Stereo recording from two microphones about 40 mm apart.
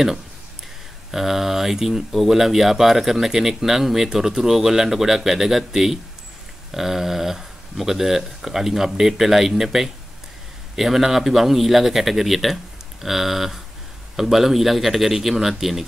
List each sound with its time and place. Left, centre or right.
1.1 s a man's voice: centre